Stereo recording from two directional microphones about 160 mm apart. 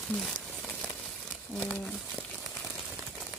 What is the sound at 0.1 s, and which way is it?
Crumpling, 5° left (ahead or behind).